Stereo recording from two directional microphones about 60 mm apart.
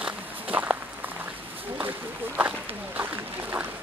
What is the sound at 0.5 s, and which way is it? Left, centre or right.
Walk, right.